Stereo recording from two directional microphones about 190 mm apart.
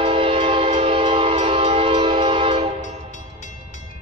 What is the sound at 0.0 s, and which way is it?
Train, 30° right (ahead or behind).